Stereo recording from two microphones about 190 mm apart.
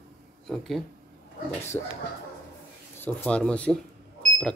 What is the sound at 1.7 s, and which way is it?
Speech, 20° left (ahead or behind).